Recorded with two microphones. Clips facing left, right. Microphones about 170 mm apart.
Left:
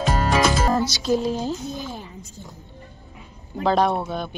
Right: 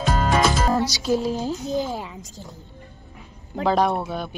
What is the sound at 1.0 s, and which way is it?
Speech, 5° right (ahead or behind).